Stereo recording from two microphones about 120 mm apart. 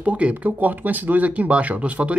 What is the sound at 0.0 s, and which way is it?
Speech, 10° right (ahead or behind).